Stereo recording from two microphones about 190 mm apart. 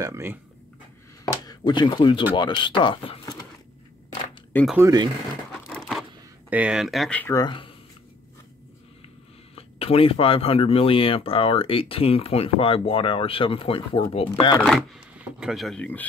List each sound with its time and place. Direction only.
0.0 s speech: 15° right (ahead or behind)
1.2 s speech: 20° left (ahead or behind)
4.7 s speech: 20° right (ahead or behind)
5.7 s a sound: centre (ahead or behind)
6.5 s speech: 5° right (ahead or behind)
7.3 s speech: 25° left (ahead or behind)
9.6 s speech: 30° left (ahead or behind)
15.4 s speech: centre (ahead or behind)